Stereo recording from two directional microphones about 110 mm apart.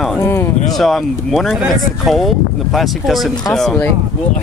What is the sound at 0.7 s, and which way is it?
Speech, centre (ahead or behind).